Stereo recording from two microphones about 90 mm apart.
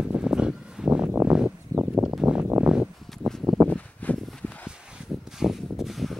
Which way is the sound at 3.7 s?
15° left (ahead or behind).